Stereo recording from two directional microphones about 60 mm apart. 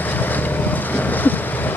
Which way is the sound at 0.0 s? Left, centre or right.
Left.